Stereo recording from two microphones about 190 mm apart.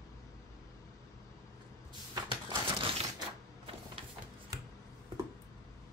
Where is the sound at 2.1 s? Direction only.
25° right (ahead or behind).